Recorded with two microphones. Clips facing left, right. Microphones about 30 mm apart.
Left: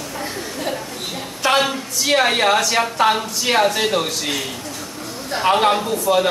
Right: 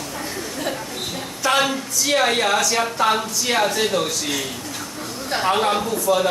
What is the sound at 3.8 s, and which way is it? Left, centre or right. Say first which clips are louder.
Speech: left 1 dB; centre.